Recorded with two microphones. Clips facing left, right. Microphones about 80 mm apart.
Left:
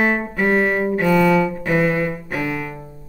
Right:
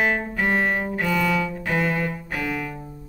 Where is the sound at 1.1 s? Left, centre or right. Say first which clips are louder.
Left 7 dB; left.